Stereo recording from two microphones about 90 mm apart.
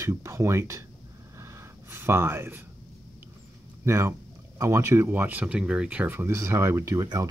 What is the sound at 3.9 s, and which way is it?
Speech, 30° right (ahead or behind).